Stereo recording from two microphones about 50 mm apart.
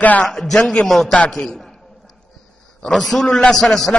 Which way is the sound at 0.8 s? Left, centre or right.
Centre.